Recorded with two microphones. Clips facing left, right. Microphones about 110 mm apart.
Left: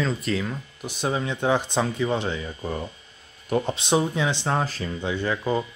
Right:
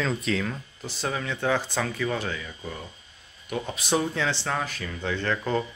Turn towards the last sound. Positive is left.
turn(degrees=10)  # may be behind; listen again after turning